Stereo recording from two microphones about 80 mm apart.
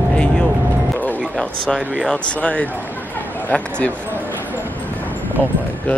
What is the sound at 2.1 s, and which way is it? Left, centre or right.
Speech, centre.